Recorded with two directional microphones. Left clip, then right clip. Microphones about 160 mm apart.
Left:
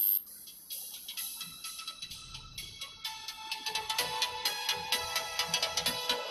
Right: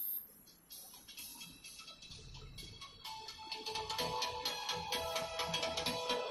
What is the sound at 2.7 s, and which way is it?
Music, 25° left (ahead or behind).